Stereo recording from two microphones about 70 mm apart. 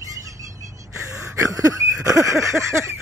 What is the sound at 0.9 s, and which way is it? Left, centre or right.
Wheeze, right.